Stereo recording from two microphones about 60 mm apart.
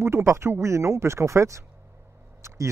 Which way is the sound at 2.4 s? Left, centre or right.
Right.